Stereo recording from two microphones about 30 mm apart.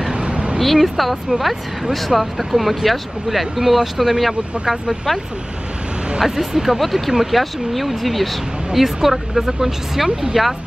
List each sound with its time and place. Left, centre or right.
0.1 s a sound: right
0.6 s speech: centre
6.2 s speech: centre